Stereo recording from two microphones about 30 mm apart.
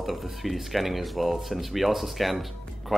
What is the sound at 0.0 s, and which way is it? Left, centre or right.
Speech, centre.